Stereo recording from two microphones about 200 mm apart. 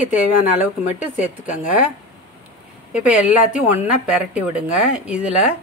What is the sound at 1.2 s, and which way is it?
Speech, 35° left (ahead or behind).